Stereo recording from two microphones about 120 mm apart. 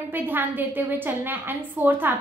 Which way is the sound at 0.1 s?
15° right (ahead or behind).